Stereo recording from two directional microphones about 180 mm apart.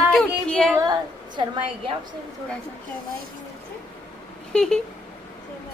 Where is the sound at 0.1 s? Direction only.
5° left (ahead or behind).